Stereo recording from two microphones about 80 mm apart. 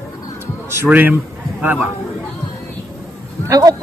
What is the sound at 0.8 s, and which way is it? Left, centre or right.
A man's voice, right.